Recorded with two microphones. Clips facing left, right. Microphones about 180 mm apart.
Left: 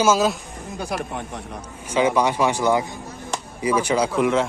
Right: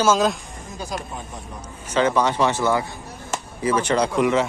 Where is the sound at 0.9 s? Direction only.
65° left (ahead or behind).